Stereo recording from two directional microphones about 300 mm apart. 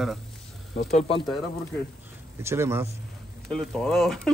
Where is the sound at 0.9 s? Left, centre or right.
Left.